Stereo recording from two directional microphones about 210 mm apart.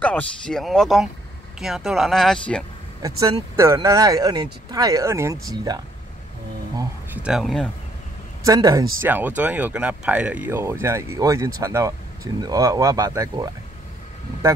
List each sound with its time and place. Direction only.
0.0 s speech: 5° left (ahead or behind)
3.5 s speech: 15° right (ahead or behind)
7.2 s speech: centre (ahead or behind)
8.5 s speech: 15° right (ahead or behind)